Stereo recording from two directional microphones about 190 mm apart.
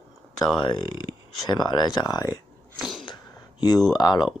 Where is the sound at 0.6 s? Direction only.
25° left (ahead or behind).